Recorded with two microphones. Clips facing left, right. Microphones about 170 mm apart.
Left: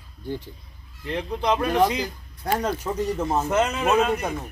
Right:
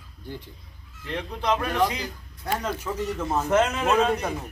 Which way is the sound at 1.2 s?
15° left (ahead or behind).